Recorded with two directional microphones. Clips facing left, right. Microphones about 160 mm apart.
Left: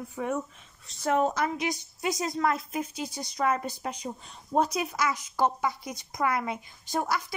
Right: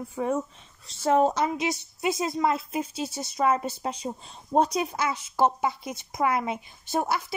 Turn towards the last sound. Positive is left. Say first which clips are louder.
# right 2 dB
turn(degrees=-20)  # may be behind; listen again after turning